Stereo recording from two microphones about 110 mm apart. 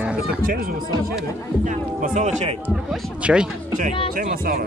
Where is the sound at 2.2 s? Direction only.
90° right.